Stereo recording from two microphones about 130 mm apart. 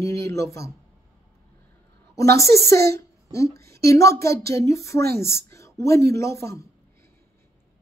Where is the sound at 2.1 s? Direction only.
25° left (ahead or behind).